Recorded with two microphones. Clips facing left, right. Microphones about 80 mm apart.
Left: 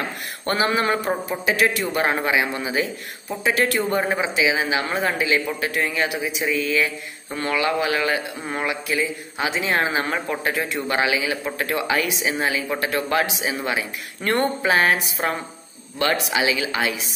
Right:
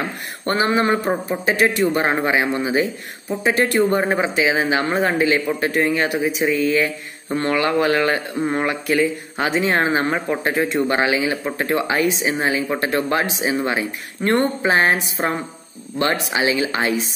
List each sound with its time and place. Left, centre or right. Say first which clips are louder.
0.5 s speech: right 3 dB; right
4.2 s a man's voice: right 3 dB; right